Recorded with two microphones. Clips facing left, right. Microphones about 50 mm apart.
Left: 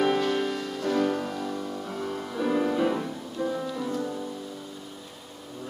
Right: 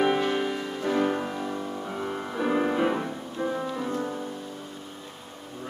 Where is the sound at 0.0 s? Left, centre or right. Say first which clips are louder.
Even; centre.